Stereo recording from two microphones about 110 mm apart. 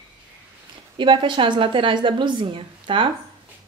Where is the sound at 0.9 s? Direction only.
50° right (ahead or behind).